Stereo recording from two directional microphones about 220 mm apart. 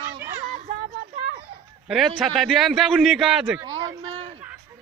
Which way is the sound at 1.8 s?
Centre (ahead or behind).